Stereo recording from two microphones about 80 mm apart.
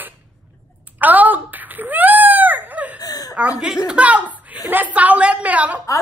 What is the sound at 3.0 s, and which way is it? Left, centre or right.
Whimper, left.